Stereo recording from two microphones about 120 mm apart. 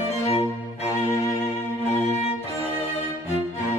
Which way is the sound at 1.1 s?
25° left (ahead or behind).